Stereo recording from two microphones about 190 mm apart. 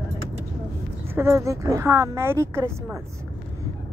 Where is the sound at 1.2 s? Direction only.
15° right (ahead or behind).